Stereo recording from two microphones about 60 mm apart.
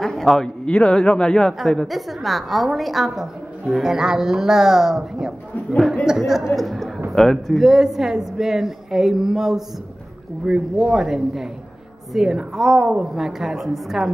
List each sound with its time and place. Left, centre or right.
0.0 s a sound: centre
0.7 s speech: centre
1.6 s a woman's voice: centre